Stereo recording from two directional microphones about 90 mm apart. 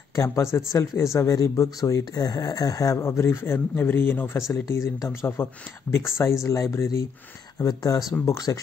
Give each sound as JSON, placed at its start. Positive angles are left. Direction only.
{"t": 0.1, "sound": "speech", "side_deg": 35}
{"t": 5.4, "sound": "speech", "side_deg": 25}